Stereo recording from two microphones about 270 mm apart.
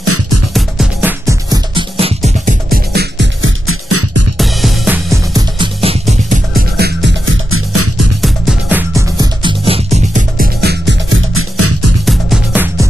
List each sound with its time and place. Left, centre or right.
0.0 s music: right
0.6 s music: centre
1.2 s music: centre; by 4.3 s right
4.4 s music: centre; by 8.1 s right
8.2 s music: centre; by 11.9 s right
12.1 s music: centre